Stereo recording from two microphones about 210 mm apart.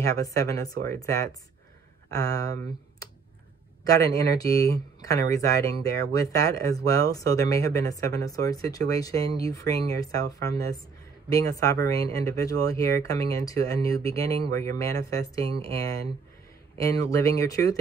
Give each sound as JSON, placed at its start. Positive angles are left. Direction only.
{"t": 0.0, "sound": "speech", "side_deg": 15}
{"t": 16.7, "sound": "speech", "side_deg": 15}